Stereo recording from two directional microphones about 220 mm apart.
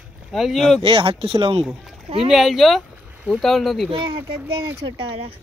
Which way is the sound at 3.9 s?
20° right (ahead or behind).